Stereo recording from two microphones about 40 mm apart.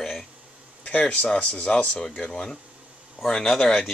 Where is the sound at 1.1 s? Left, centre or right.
Left.